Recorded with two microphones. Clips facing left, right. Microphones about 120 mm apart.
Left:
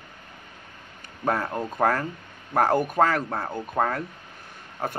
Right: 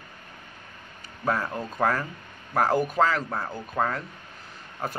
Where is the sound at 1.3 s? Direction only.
55° left (ahead or behind).